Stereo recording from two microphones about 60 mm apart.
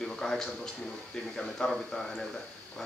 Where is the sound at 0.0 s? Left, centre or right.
Centre.